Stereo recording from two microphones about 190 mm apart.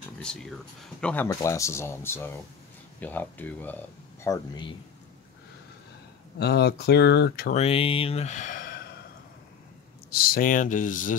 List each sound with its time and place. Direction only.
0.2 s speech: 5° left (ahead or behind); by 4.7 s 20° left (ahead or behind)
6.4 s speech: 60° left (ahead or behind)
7.5 s speech: 30° left (ahead or behind)
10.1 s speech: 50° left (ahead or behind)